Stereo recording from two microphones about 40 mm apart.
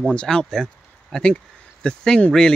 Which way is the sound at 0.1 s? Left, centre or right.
Left.